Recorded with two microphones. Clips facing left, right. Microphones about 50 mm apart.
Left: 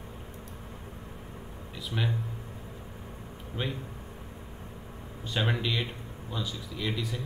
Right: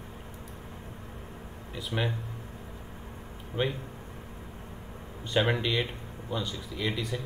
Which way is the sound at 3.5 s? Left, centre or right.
Right.